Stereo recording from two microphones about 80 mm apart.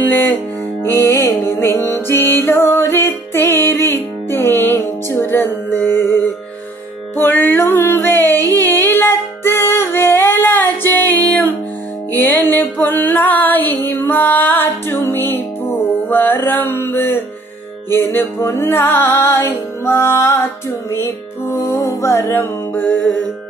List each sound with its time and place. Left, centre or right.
0.8 s music: left